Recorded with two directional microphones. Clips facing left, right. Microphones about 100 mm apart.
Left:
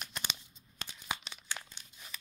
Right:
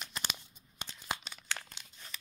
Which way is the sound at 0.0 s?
Centre (ahead or behind).